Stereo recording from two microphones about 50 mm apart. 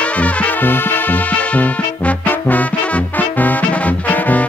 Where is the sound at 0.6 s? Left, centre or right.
Left.